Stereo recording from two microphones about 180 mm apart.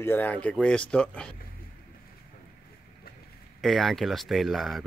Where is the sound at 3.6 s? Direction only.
Centre (ahead or behind).